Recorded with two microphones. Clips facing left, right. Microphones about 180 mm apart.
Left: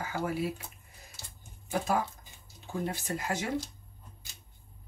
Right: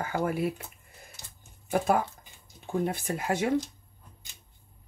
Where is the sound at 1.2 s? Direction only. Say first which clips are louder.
Even; 15° right (ahead or behind).